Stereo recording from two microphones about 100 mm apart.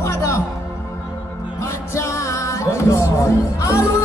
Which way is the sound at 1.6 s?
30° left (ahead or behind).